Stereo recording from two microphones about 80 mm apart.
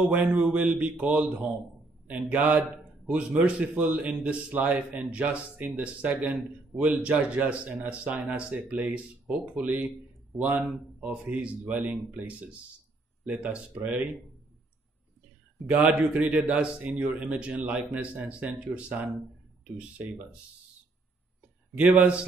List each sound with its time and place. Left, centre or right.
0.1 s a man's voice: right
15.7 s a man's voice: centre
21.7 s a man's voice: centre